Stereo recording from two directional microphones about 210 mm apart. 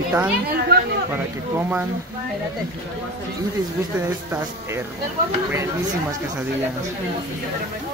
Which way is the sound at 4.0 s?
10° right (ahead or behind).